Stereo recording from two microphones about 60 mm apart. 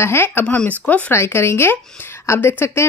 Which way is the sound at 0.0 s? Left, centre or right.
Left.